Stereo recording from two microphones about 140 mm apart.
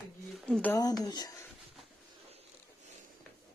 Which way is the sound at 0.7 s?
30° left (ahead or behind).